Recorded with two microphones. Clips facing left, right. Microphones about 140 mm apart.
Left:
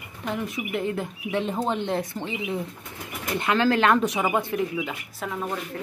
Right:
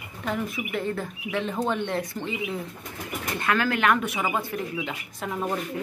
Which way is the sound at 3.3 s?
25° left (ahead or behind).